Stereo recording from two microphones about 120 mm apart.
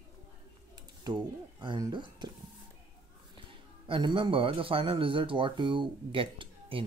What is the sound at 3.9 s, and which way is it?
Speech, 45° right (ahead or behind).